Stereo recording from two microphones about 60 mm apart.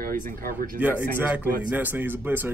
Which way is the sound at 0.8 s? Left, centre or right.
Right.